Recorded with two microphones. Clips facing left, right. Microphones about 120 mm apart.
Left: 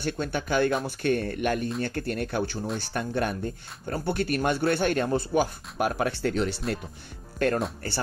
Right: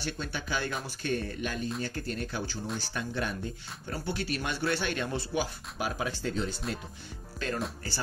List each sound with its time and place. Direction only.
0.0 s speech: 50° left (ahead or behind); by 6.6 s 70° left (ahead or behind)
7.3 s speech: 55° left (ahead or behind)